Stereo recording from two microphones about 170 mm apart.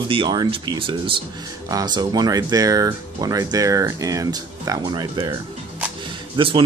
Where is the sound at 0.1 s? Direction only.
30° right (ahead or behind).